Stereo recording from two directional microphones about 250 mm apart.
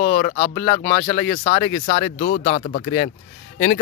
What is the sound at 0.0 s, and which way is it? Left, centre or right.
Speech, left.